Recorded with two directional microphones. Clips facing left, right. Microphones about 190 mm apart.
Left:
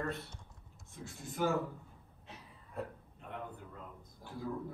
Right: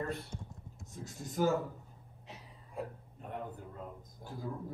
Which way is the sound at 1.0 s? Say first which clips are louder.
Right 3 dB; 40° right (ahead or behind).